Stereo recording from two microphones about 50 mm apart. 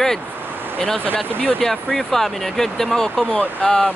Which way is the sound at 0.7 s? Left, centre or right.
Centre.